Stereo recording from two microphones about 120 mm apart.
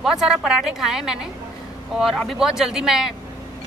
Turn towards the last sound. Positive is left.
turn(degrees=-5)  # may be behind; listen again after turning